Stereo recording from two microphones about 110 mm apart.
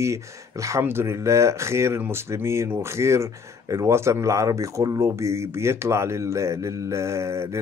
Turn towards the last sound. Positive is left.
turn(degrees=-25)  # may be behind; listen again after turning